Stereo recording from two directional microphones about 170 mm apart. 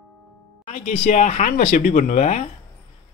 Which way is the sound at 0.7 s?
45° left (ahead or behind).